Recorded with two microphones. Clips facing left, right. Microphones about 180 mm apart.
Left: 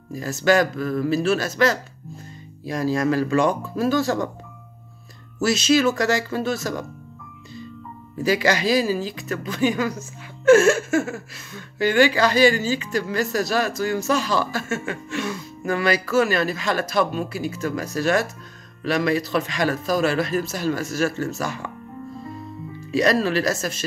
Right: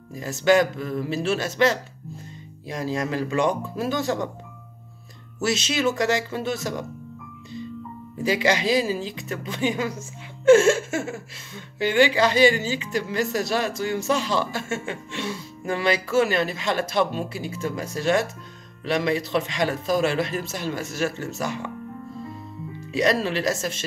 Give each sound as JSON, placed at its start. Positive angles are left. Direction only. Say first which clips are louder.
{"t": 0.1, "sound": "a woman's voice", "louder": "even", "side_deg": -20}
{"t": 5.4, "sound": "a woman's voice", "louder": "left 5 dB", "side_deg": -20}
{"t": 8.2, "sound": "a woman's voice", "louder": "left 2 dB", "side_deg": -20}
{"t": 22.8, "sound": "a woman's voice", "louder": "left 3 dB", "side_deg": -20}